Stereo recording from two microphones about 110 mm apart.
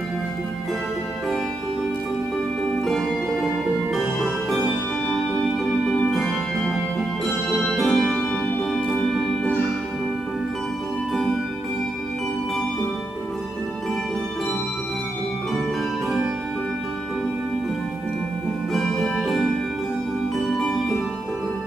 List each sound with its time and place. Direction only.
2.8 s music: centre (ahead or behind)
5.9 s organ: 5° left (ahead or behind)
18.7 s music: centre (ahead or behind)
20.3 s harp: centre (ahead or behind)